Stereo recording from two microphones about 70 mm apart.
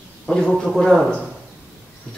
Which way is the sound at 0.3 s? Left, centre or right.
Centre.